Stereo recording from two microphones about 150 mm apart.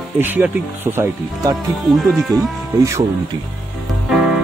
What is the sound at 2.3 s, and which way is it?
Speech, 20° right (ahead or behind).